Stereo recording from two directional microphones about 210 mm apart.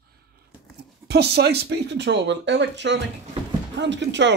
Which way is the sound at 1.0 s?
50° right (ahead or behind).